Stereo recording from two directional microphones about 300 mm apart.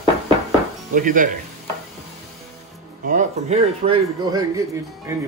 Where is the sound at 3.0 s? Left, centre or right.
Right.